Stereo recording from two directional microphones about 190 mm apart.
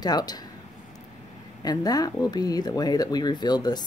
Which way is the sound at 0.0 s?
20° left (ahead or behind).